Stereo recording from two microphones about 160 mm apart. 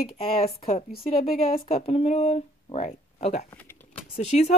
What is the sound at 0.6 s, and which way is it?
Speech, 40° left (ahead or behind).